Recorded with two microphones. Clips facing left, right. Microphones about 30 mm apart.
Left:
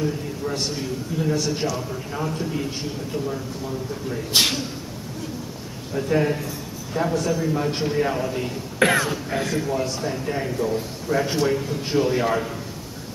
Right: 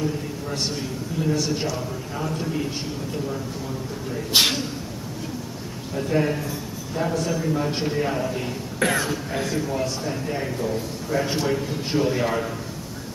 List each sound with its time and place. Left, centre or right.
0.7 s a man's voice: centre
4.3 s a man's voice: centre
5.9 s a man's voice: centre
8.7 s speech: left
9.0 s a man's voice: centre